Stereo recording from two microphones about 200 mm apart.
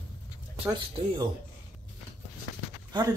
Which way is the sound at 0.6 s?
20° right (ahead or behind).